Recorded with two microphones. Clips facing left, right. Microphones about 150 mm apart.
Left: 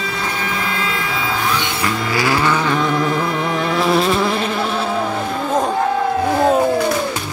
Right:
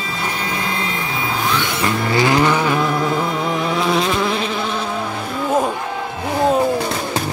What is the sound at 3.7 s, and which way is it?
Insect, centre (ahead or behind).